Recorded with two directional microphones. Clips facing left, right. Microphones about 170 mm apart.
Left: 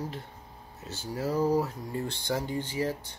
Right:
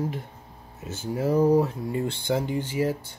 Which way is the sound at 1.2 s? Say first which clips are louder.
Right 6 dB; 25° right (ahead or behind).